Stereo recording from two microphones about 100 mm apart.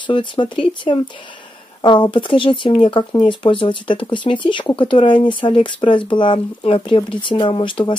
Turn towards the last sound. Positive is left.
turn(degrees=55)  # may be behind; listen again after turning